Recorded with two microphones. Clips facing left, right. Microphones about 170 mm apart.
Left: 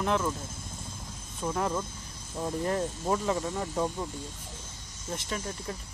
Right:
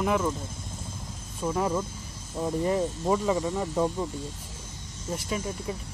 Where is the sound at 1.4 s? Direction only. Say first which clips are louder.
Right 3 dB; 5° right (ahead or behind).